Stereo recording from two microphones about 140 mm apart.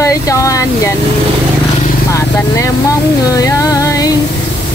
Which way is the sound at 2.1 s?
20° left (ahead or behind).